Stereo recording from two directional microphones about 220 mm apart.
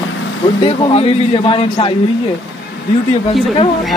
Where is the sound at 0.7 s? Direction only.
25° left (ahead or behind).